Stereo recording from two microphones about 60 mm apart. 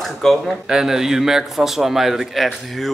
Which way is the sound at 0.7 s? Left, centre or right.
Centre.